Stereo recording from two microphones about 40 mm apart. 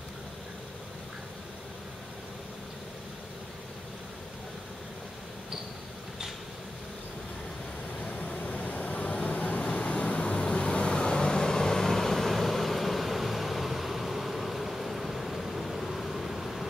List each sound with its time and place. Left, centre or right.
8.0 s vehicle: left
9.6 s vehicle: left; by 16.6 s centre